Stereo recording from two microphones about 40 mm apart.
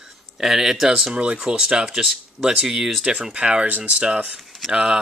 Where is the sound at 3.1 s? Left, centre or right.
Centre.